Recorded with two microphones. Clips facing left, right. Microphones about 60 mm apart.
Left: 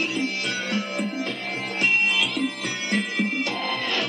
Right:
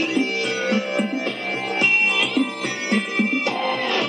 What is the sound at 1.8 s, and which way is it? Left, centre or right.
Music, right.